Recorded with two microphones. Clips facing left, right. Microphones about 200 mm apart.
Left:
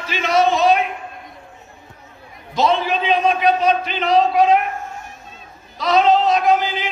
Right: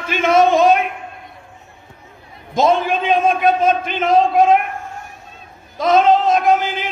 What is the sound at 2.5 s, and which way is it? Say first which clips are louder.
A man's voice: right 3 dB; 50° right (ahead or behind).